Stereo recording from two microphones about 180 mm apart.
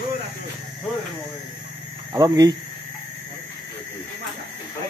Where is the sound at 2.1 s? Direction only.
20° right (ahead or behind).